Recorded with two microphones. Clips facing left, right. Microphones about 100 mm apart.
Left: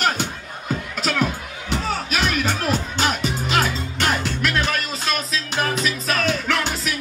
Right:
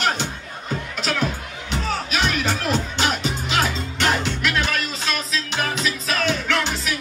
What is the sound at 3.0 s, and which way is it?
Music, 45° left (ahead or behind).